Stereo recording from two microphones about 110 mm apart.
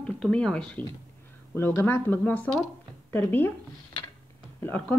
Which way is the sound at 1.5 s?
20° left (ahead or behind).